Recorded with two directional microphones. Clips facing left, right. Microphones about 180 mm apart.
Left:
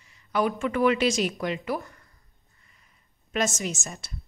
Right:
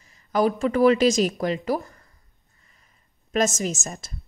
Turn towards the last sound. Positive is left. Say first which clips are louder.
# right 4 dB
turn(degrees=-40)  # may be behind; listen again after turning